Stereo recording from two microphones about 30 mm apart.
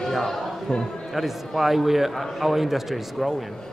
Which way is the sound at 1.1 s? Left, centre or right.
Centre.